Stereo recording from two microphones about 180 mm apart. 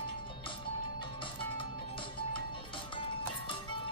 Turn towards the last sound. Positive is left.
turn(degrees=30)  # may be behind; listen again after turning